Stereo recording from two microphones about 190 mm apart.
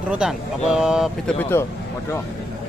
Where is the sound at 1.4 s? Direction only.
10° left (ahead or behind).